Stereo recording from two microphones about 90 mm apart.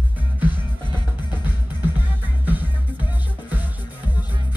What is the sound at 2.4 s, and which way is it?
Music, 20° right (ahead or behind).